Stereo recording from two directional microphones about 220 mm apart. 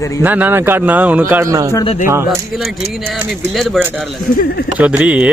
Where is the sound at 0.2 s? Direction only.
10° right (ahead or behind).